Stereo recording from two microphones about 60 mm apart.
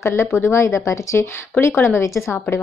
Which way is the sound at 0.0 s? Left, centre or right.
Left.